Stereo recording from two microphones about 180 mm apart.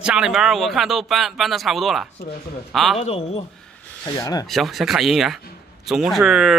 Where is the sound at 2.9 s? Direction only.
35° left (ahead or behind).